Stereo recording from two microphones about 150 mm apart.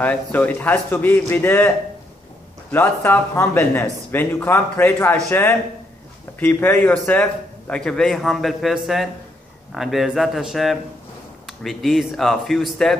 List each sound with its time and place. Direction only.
0.0 s speech: 10° left (ahead or behind)
2.7 s a man's voice: 15° left (ahead or behind)